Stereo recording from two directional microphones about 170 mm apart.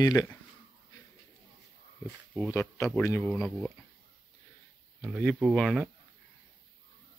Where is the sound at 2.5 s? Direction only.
15° left (ahead or behind).